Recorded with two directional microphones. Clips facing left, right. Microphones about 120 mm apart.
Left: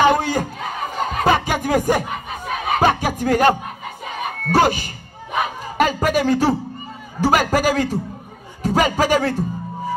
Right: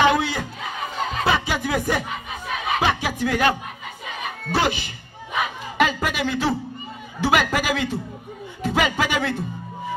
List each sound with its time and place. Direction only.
0.0 s speech: 45° left (ahead or behind)
4.0 s a sound: 45° left (ahead or behind)
7.2 s a man's voice: 40° left (ahead or behind)
8.6 s music: 40° left (ahead or behind)